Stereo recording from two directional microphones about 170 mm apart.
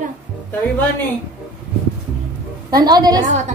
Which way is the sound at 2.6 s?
25° right (ahead or behind).